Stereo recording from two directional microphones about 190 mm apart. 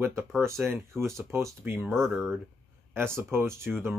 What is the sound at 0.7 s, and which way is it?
Speech, 15° right (ahead or behind).